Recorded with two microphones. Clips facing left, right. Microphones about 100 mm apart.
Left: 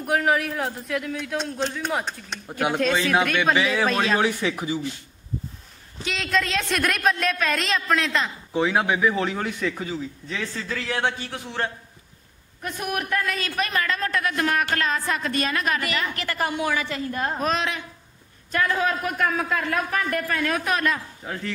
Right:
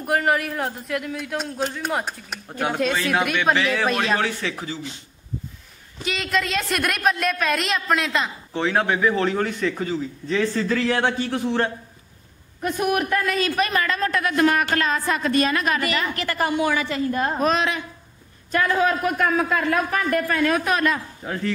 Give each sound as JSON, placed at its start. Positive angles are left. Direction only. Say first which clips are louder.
{"t": 0.0, "sound": "a man's voice", "louder": "right 1 dB", "side_deg": 0}
{"t": 3.5, "sound": "a man's voice", "louder": "even", "side_deg": 15}
{"t": 6.0, "sound": "a man's voice", "louder": "right 1 dB", "side_deg": 0}
{"t": 8.5, "sound": "a man's voice", "louder": "even", "side_deg": 10}
{"t": 12.8, "sound": "a man's voice", "louder": "right 4 dB", "side_deg": -10}
{"t": 15.9, "sound": "a woman's voice", "louder": "right 3 dB", "side_deg": -30}
{"t": 17.5, "sound": "a man's voice", "louder": "right 4 dB", "side_deg": -10}